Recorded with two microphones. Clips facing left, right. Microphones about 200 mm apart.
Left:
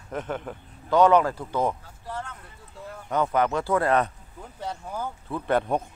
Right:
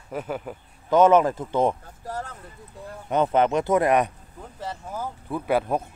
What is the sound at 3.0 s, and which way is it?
Speech, 20° right (ahead or behind).